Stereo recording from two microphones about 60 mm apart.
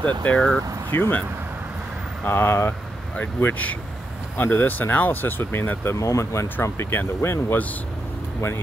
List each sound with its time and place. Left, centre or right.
0.0 s speech: left
0.9 s speech: left
2.2 s speech: left
3.3 s speech: left
5.9 s speech: left
6.6 s speech: left